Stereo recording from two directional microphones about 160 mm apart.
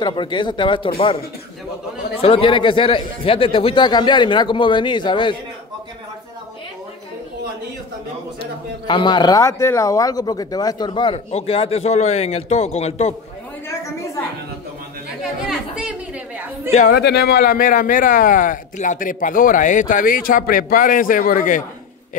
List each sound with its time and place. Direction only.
0.0 s speech: 30° left (ahead or behind)
2.2 s speech: 35° left (ahead or behind)
8.4 s speech: 30° left (ahead or behind)
15.4 s chatter: 5° right (ahead or behind)
16.9 s speech: 90° left; by 21.6 s 55° left (ahead or behind)